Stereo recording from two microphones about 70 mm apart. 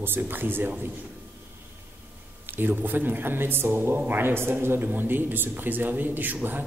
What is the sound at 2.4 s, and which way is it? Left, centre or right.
Speech, right.